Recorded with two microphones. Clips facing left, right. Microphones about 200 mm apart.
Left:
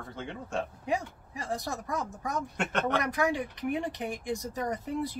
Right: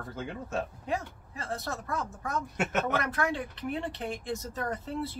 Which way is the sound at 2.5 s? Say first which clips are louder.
Even; 5° right (ahead or behind).